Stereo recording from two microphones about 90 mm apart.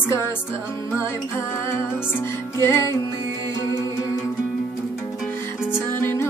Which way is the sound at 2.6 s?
35° left (ahead or behind).